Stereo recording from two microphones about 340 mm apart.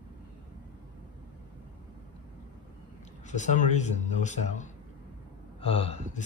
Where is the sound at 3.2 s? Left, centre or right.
Left.